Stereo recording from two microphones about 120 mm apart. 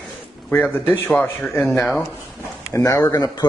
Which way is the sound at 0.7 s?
20° left (ahead or behind).